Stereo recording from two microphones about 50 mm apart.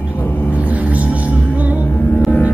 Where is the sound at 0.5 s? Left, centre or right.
Right.